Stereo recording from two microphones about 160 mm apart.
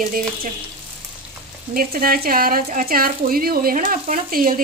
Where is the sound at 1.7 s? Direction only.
65° right (ahead or behind).